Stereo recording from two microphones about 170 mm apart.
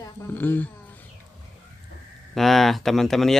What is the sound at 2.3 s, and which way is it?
Speech, centre (ahead or behind).